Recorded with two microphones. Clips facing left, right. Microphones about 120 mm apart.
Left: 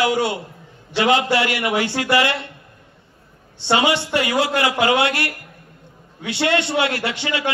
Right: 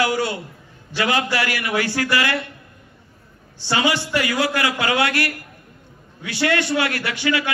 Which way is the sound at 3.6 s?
25° left (ahead or behind).